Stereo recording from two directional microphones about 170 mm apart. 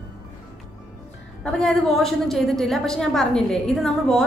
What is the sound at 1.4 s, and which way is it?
A woman's voice, 5° left (ahead or behind).